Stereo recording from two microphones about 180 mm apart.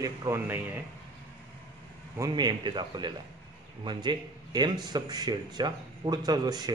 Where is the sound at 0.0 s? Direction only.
20° right (ahead or behind).